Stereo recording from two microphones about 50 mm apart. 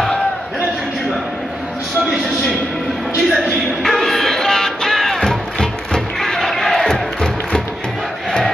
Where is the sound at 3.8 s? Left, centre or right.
Centre.